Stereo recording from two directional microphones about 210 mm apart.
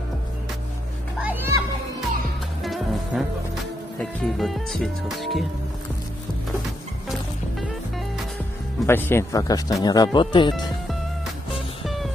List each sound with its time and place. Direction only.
1.2 s children playing: 10° right (ahead or behind)
2.6 s music: centre (ahead or behind)
4.0 s speech: centre (ahead or behind)
7.1 s music: centre (ahead or behind)
8.8 s speech: 10° left (ahead or behind)
11.8 s music: centre (ahead or behind)